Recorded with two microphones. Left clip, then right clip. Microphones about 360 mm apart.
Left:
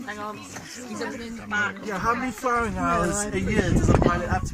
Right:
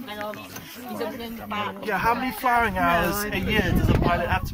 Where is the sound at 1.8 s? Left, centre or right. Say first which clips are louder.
Right 2 dB; right.